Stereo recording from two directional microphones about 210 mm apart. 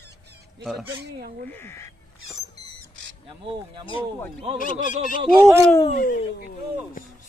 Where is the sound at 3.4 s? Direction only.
25° right (ahead or behind).